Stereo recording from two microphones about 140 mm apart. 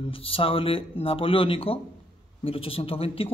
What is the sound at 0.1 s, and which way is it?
A man's voice, 40° left (ahead or behind).